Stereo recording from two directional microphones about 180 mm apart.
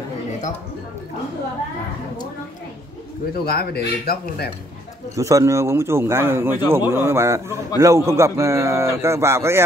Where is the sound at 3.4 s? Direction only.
60° left (ahead or behind).